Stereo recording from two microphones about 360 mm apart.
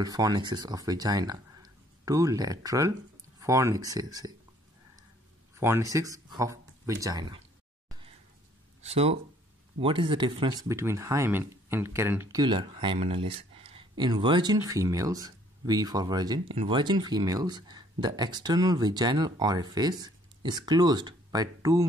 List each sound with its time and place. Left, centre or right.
0.0 s speech: centre
5.6 s speech: centre
8.8 s speech: centre